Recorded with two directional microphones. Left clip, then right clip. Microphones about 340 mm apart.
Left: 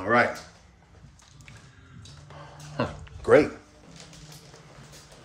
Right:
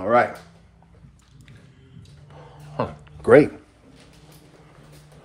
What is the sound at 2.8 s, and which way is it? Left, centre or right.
Dog, right.